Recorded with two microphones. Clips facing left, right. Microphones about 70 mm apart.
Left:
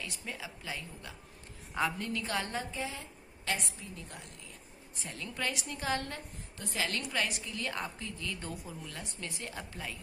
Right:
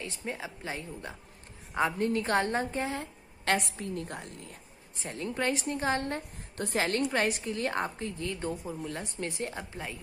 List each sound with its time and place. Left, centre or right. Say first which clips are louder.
0.0 s a woman's voice: right 5 dB; right
5.0 s a woman's voice: right 6 dB; right
6.5 s a woman's voice: right 6 dB; right
6.9 s a woman's voice: right 7 dB; right